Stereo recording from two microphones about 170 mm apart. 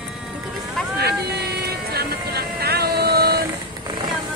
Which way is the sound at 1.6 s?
70° right (ahead or behind).